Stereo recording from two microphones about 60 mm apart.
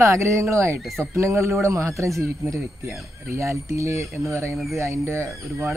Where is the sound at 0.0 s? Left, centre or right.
Right.